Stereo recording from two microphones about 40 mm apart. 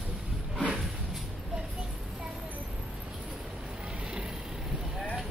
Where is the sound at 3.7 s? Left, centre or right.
Right.